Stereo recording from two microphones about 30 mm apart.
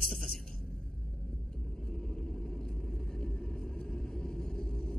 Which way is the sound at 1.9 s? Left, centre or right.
Centre.